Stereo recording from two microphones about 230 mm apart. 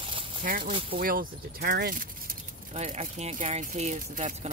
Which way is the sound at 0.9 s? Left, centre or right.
Right.